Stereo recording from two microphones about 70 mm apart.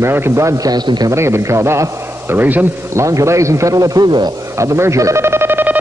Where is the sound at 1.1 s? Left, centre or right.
Right.